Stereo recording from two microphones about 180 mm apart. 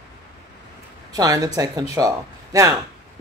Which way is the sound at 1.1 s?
20° right (ahead or behind).